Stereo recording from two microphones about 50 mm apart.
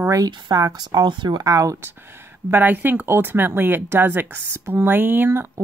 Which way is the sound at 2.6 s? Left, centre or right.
Right.